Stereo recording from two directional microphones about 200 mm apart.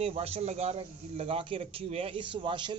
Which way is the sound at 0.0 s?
30° right (ahead or behind).